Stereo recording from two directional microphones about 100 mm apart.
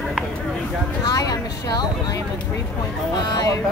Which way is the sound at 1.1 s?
35° left (ahead or behind).